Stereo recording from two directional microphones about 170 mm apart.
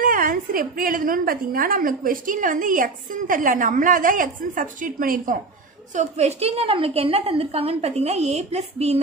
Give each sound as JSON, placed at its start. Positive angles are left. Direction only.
{"t": 0.0, "sound": "a woman's voice", "side_deg": -55}
{"t": 5.9, "sound": "a woman's voice", "side_deg": -40}